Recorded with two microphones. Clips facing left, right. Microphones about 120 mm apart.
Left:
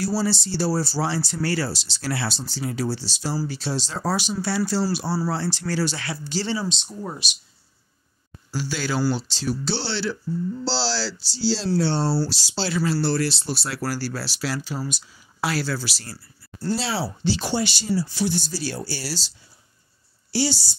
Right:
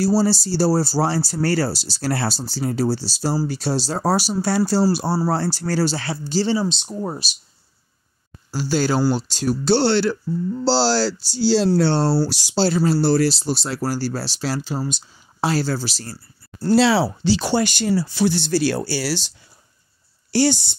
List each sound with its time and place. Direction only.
0.0 s speech: 40° right (ahead or behind)
8.5 s speech: 40° right (ahead or behind); by 12.2 s 70° right (ahead or behind)
12.4 s speech: 40° right (ahead or behind)
16.7 s speech: 80° right
17.6 s speech: 60° right (ahead or behind)
20.2 s speech: 55° right (ahead or behind)